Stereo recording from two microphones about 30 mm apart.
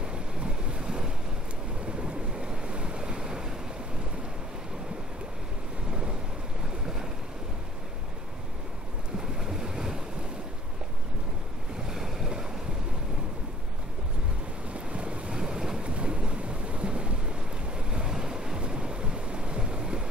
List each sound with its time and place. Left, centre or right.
0.0 s waves: right
1.9 s boat: right
2.6 s waves: right
5.9 s thunder: right
9.4 s waves: centre
11.9 s waves: centre
14.7 s boat: right
15.4 s boat: centre
15.8 s boat: right
18.1 s waves: right
18.6 s waves: right